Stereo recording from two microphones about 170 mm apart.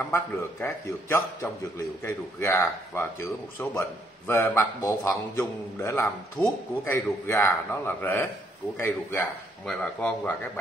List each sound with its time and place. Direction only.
0.1 s a man's voice: 10° left (ahead or behind)
4.3 s a man's voice: 15° left (ahead or behind)